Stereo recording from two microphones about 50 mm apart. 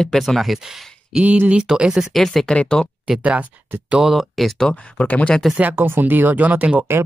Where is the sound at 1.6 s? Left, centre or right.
Centre.